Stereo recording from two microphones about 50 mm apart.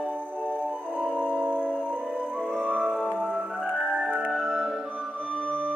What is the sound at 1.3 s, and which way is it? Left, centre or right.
Music, right.